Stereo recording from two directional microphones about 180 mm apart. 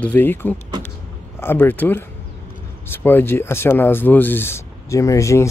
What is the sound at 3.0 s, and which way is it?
A man's voice, 10° left (ahead or behind).